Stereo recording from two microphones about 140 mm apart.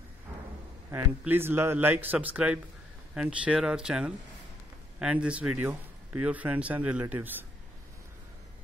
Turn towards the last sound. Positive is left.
turn(degrees=-15)  # may be behind; listen again after turning